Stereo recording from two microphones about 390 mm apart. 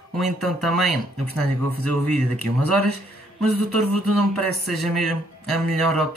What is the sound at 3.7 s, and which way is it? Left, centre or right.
Speech, right.